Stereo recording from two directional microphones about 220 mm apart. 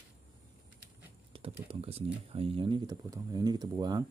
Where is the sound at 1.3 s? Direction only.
25° right (ahead or behind).